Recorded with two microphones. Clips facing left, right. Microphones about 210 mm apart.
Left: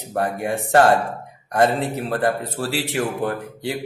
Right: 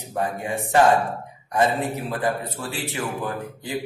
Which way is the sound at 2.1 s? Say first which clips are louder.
Left 4 dB; 80° left.